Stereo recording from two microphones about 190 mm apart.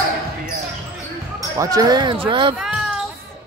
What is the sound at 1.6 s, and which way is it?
Speech, 20° right (ahead or behind).